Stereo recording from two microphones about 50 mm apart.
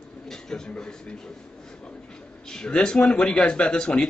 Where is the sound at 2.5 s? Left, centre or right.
Centre.